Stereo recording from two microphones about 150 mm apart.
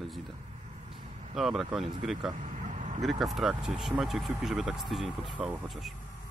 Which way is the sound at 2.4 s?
50° right (ahead or behind).